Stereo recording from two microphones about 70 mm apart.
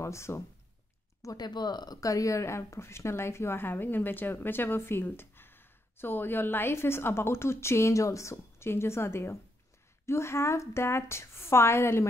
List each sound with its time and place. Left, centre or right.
0.0 s speech: left
1.2 s speech: left
2.0 s speech: left